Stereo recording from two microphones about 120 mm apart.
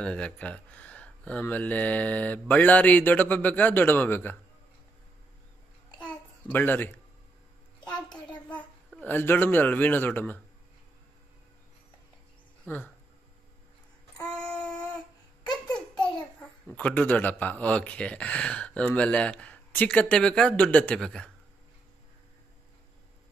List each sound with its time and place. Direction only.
0.0 s a child's voice: 10° left (ahead or behind)
6.5 s a child's voice: 15° left (ahead or behind)
8.1 s a sound: 10° left (ahead or behind)
9.0 s a child's voice: 15° left (ahead or behind)
12.6 s speech: 15° left (ahead or behind)
16.0 s a child's voice: 10° left (ahead or behind)